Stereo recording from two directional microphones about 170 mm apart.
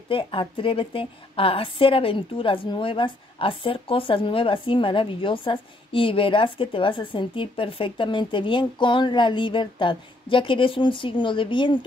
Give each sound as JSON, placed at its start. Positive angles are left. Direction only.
{"t": 0.1, "sound": "a woman's voice", "side_deg": 30}